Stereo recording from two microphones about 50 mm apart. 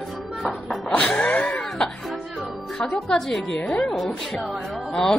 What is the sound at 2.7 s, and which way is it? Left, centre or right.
A woman's voice, centre.